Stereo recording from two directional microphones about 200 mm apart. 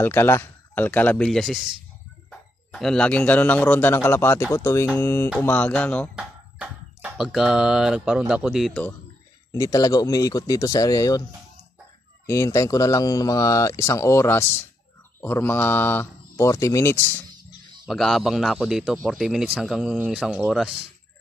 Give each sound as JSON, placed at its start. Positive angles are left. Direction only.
{"t": 0.0, "sound": "speech", "side_deg": 10}
{"t": 6.1, "sound": "speech", "side_deg": -5}
{"t": 9.5, "sound": "speech", "side_deg": 15}
{"t": 12.3, "sound": "speech", "side_deg": 15}
{"t": 17.8, "sound": "speech", "side_deg": 0}